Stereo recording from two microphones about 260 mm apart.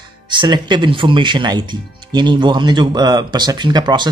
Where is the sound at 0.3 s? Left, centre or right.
Centre.